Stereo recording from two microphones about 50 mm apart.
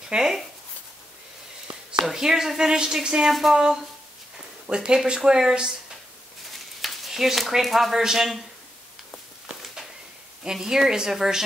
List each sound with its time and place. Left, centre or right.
0.1 s speech: centre
2.0 s speech: centre
6.8 s speech: centre
10.4 s speech: centre